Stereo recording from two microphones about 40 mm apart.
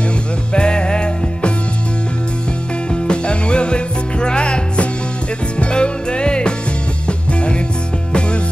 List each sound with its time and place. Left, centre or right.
0.5 s music: left
2.9 s music: left